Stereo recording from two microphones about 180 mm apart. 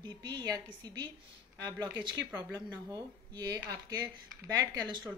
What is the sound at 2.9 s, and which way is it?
Speech, 20° right (ahead or behind).